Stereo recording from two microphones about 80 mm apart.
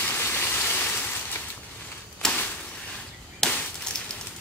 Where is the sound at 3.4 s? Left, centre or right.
Centre.